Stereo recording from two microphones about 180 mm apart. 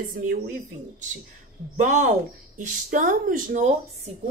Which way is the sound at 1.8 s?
45° right (ahead or behind).